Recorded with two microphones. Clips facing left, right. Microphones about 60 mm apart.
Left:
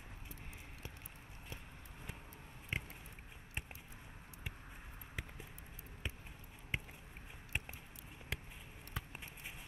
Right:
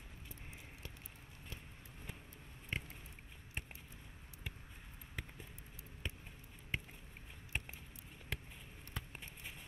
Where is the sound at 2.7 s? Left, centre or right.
Centre.